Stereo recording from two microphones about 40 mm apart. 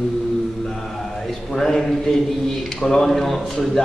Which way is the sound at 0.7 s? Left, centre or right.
Centre.